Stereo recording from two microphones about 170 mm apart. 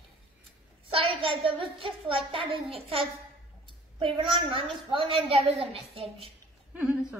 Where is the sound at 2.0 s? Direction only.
30° right (ahead or behind).